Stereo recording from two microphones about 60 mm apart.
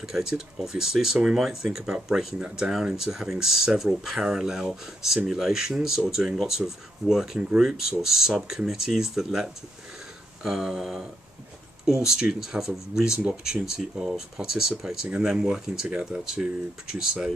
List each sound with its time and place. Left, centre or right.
0.1 s speech: centre
15.9 s speech: right
16.8 s speech: centre